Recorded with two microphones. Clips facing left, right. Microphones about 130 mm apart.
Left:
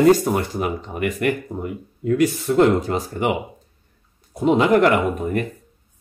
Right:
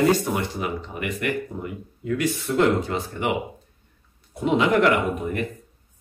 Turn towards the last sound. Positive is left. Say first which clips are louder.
# left 3 dB
turn(degrees=0)  # may be behind; listen again after turning